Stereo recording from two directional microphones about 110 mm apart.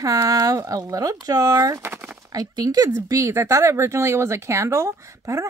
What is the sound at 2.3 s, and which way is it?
Speech, 35° right (ahead or behind).